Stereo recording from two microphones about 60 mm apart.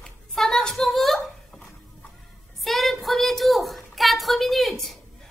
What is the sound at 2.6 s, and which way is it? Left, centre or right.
A woman's voice, centre.